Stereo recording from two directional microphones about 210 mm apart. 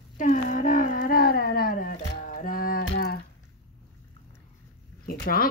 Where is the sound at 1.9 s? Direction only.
45° left (ahead or behind).